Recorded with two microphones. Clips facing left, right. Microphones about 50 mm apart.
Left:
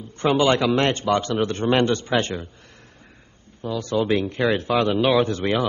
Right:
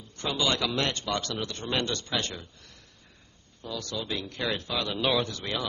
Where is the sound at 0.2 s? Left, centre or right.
Left.